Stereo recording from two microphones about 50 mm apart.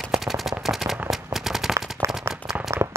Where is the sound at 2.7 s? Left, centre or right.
Right.